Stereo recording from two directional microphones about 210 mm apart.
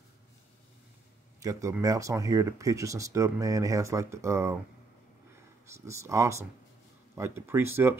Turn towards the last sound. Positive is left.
turn(degrees=-10)  # may be behind; listen again after turning